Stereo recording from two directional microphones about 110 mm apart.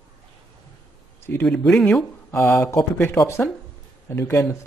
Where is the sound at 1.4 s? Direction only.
5° left (ahead or behind).